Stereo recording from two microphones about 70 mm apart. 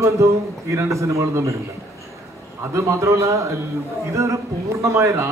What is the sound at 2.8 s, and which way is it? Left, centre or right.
A man's voice, right.